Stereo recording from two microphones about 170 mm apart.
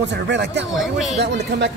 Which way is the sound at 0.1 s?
90° right.